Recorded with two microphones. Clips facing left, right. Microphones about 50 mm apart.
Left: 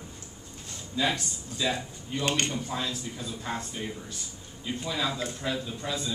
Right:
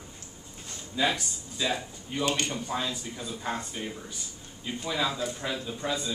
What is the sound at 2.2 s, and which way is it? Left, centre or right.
Speech, left.